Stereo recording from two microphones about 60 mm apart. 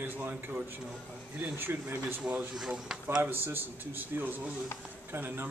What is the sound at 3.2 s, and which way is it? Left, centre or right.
Speech, right.